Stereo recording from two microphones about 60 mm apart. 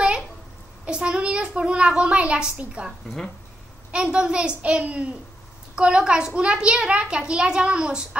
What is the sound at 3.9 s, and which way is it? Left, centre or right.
A child's voice, centre.